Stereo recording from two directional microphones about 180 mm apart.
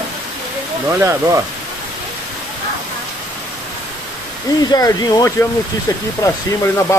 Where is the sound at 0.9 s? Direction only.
15° right (ahead or behind).